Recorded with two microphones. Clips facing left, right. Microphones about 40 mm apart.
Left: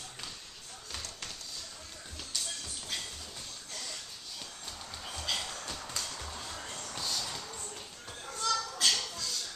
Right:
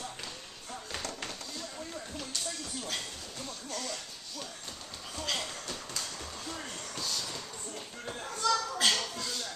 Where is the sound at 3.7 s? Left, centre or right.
Centre.